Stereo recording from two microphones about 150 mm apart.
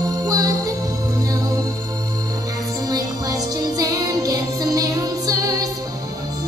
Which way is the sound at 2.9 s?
25° right (ahead or behind).